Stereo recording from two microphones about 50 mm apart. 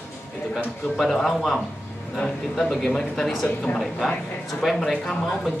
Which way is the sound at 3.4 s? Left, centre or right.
Left.